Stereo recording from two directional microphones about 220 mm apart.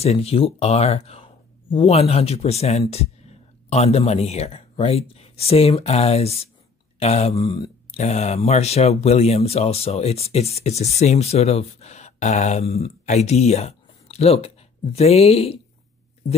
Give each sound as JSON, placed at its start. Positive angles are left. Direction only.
{"t": 0.0, "sound": "speech", "side_deg": 30}